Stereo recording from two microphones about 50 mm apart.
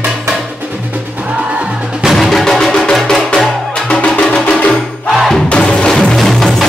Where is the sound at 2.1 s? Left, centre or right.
Centre.